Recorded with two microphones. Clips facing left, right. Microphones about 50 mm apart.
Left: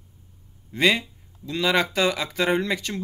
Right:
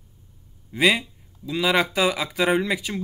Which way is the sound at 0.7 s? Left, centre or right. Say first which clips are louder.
Right 1 dB; centre.